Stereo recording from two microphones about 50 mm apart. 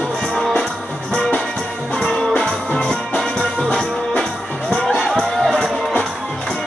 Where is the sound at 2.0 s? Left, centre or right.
Centre.